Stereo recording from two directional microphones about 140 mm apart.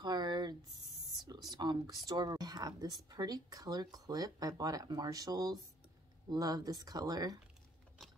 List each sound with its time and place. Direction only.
0.0 s a sound: 30° right (ahead or behind)
1.5 s speech: 30° right (ahead or behind)
8.0 s gears: centre (ahead or behind)